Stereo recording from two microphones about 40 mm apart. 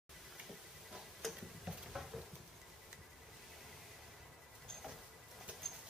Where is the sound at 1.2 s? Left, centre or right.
Centre.